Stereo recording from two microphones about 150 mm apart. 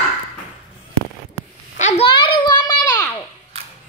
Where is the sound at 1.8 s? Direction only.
50° left (ahead or behind).